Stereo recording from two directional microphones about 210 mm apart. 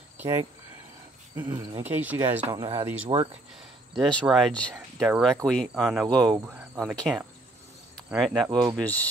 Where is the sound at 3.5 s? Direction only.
Centre (ahead or behind).